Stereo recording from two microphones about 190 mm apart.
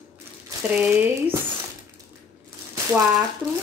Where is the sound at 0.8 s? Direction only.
10° right (ahead or behind).